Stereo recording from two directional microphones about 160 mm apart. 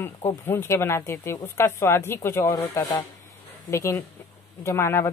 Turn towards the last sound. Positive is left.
turn(degrees=15)  # may be behind; listen again after turning